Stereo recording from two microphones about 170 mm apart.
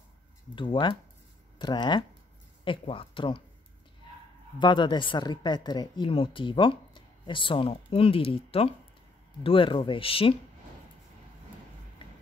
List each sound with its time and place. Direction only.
0.6 s speech: 30° left (ahead or behind)
4.6 s speech: 25° left (ahead or behind)